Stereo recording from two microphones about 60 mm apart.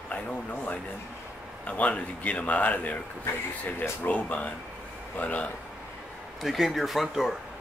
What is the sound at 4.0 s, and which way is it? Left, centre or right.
A man's voice, left.